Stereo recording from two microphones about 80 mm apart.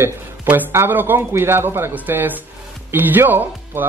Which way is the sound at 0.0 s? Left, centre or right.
Right.